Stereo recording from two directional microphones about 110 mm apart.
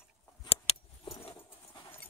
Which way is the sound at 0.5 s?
65° left (ahead or behind).